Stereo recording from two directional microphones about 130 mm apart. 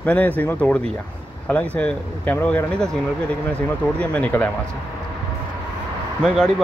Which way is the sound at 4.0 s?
10° left (ahead or behind).